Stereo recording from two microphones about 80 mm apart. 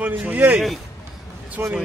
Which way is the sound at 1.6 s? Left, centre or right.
Right.